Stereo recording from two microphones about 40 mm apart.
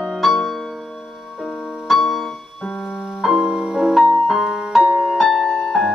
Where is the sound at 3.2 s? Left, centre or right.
Centre.